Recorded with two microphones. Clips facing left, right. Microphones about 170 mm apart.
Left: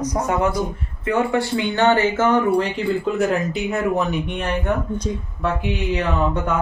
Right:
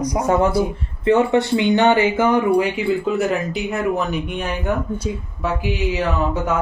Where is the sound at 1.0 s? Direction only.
25° right (ahead or behind).